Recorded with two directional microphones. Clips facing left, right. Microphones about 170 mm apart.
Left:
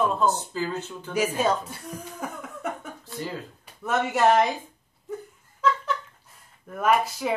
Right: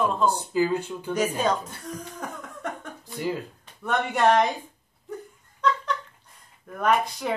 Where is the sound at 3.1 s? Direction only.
15° right (ahead or behind).